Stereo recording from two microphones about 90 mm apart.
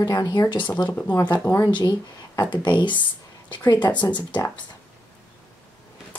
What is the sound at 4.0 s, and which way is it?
Speech, 55° left (ahead or behind).